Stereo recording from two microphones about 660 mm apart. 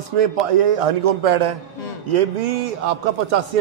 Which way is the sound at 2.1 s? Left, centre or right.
Right.